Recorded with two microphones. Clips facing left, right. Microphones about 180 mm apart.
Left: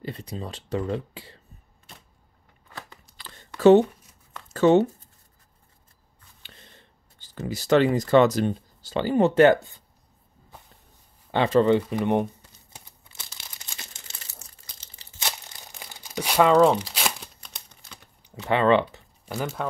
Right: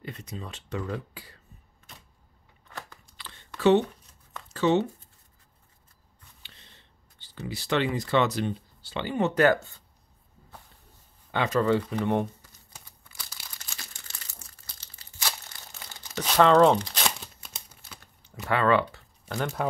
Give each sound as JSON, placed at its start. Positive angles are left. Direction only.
{"t": 0.0, "sound": "speech", "side_deg": 35}
{"t": 3.2, "sound": "a sound", "side_deg": 40}
{"t": 6.4, "sound": "speech", "side_deg": 50}
{"t": 11.3, "sound": "speech", "side_deg": 30}
{"t": 13.1, "sound": "crumpling", "side_deg": 25}
{"t": 17.4, "sound": "a sound", "side_deg": -5}
{"t": 18.3, "sound": "speech", "side_deg": 20}
{"t": 19.3, "sound": "speech", "side_deg": 0}